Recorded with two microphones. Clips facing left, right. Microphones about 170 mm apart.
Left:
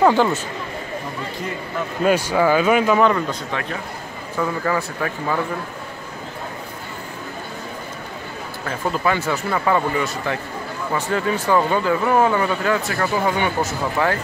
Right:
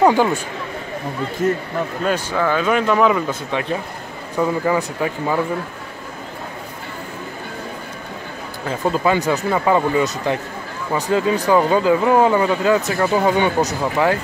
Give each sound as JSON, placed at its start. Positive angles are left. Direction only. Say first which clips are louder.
{"t": 0.0, "sound": "speech", "louder": "right 1 dB", "side_deg": -15}
{"t": 1.4, "sound": "a man's voice", "louder": "right 12 dB", "side_deg": -45}
{"t": 2.0, "sound": "speech", "louder": "left 4 dB", "side_deg": 10}
{"t": 4.4, "sound": "speech", "louder": "right 4 dB", "side_deg": -15}
{"t": 8.6, "sound": "speech", "louder": "right 3 dB", "side_deg": -15}